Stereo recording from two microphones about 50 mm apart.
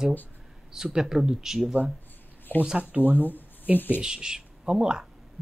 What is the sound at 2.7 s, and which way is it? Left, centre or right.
Speech, right.